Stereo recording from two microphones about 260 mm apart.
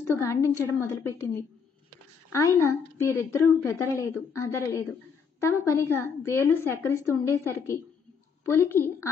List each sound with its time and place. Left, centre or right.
0.0 s a woman's voice: centre
2.3 s a woman's voice: centre